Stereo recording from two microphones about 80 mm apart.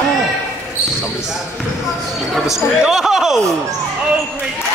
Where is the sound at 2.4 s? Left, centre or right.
Centre.